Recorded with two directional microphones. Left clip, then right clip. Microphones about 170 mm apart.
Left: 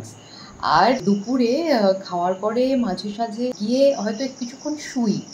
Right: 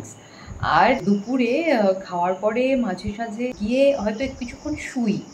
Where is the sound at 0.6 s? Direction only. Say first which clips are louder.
Left 1 dB; 5° left (ahead or behind).